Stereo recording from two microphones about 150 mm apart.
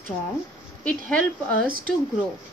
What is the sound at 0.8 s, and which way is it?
Speech, 10° left (ahead or behind).